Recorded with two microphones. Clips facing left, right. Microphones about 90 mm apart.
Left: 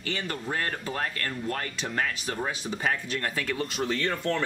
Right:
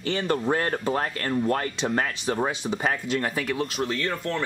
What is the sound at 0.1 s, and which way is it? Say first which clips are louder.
Speech: right 8 dB; 30° right (ahead or behind).